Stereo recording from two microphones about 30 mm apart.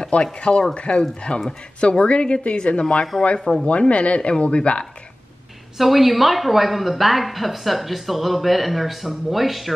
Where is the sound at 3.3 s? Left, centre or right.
Centre.